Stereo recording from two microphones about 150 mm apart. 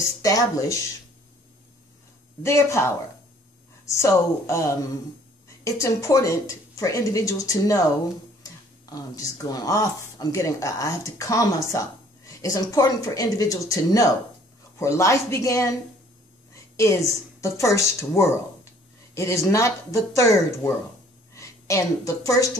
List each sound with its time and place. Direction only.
0.2 s speech: 20° left (ahead or behind)
2.4 s a woman's voice: 20° left (ahead or behind)